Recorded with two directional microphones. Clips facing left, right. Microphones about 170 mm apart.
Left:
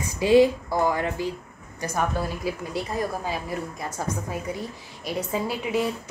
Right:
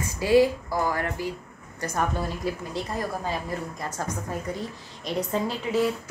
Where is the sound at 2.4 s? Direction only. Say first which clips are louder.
Left 1 dB; 5° left (ahead or behind).